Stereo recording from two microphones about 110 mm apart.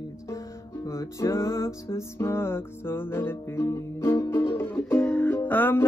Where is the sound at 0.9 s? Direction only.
25° left (ahead or behind).